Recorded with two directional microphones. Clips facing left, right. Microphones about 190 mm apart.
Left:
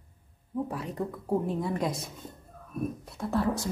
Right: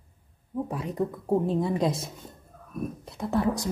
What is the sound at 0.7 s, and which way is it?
A woman's voice, 15° right (ahead or behind).